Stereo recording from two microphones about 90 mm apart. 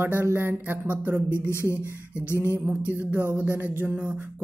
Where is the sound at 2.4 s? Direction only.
20° right (ahead or behind).